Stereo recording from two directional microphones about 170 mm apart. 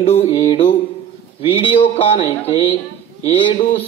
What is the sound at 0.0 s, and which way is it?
A man's voice, 35° left (ahead or behind).